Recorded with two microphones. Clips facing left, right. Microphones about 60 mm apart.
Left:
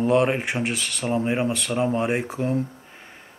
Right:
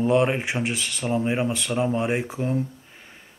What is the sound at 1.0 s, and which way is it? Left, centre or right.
Speech, centre.